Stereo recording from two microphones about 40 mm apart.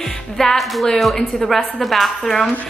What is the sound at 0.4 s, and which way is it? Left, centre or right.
Speech, centre.